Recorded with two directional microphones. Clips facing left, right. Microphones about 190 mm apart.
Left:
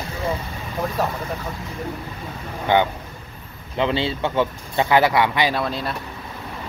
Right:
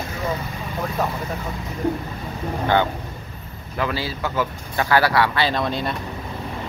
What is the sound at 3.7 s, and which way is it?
Speech, 25° left (ahead or behind).